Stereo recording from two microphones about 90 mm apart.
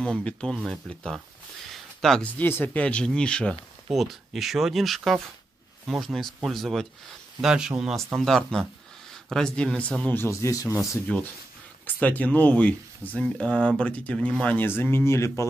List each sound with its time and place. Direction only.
0.0 s speech: 10° left (ahead or behind)
1.7 s a sound: 5° left (ahead or behind)
2.2 s speech: 15° left (ahead or behind)
3.9 s speech: centre (ahead or behind)
10.3 s speech: 35° left (ahead or behind)
11.8 s speech: 20° left (ahead or behind)